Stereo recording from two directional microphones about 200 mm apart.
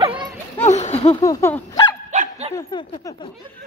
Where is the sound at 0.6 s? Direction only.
35° left (ahead or behind).